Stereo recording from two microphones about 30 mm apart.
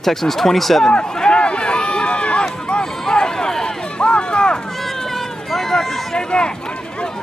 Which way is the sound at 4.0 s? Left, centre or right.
Left.